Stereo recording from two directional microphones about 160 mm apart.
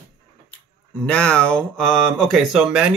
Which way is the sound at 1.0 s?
5° left (ahead or behind).